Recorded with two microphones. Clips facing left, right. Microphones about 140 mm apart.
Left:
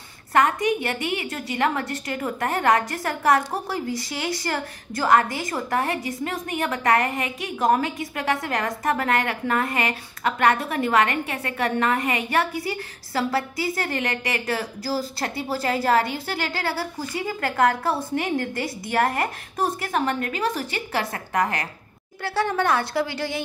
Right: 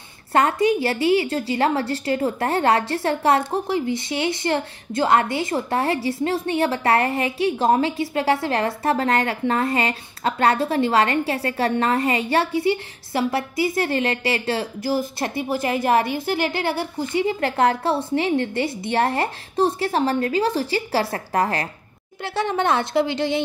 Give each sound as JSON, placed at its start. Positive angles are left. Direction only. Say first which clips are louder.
{"t": 0.3, "sound": "a woman's voice", "louder": "right 2 dB", "side_deg": -30}